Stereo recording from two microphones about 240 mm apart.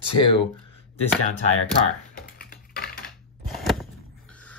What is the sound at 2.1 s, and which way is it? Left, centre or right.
Typing, left.